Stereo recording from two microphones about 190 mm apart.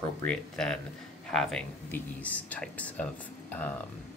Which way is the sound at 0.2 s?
5° left (ahead or behind).